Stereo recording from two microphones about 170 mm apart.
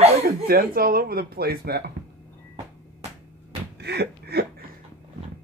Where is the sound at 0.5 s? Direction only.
60° right (ahead or behind).